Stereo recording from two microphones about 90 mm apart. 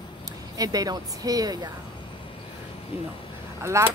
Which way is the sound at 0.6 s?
45° right (ahead or behind).